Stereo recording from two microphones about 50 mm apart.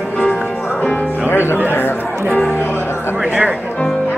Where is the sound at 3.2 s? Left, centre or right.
Right.